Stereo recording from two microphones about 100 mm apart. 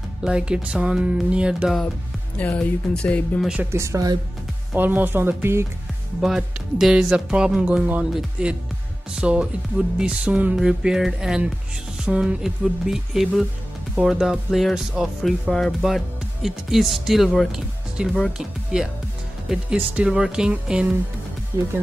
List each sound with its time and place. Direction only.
0.2 s speech: 10° right (ahead or behind)
2.3 s speech: 15° left (ahead or behind)
3.7 s speech: 30° right (ahead or behind)
4.7 s speech: 20° right (ahead or behind)
6.2 s speech: 5° right (ahead or behind)
19.9 s speech: 10° right (ahead or behind)